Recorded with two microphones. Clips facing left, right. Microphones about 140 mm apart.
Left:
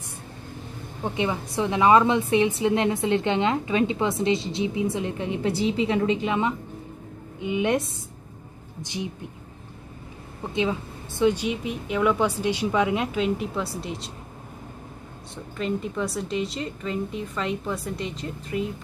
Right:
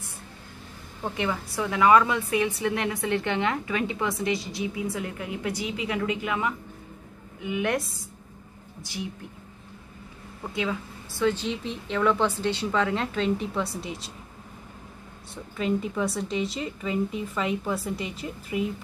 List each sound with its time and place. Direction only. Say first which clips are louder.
1.0 s a woman's voice: left 2 dB; 20° left (ahead or behind)
8.8 s a woman's voice: left 3 dB; 20° left (ahead or behind)
10.4 s speech: left 4 dB; 20° left (ahead or behind); by 14.1 s centre (ahead or behind)
15.5 s a woman's voice: right 1 dB; 5° right (ahead or behind)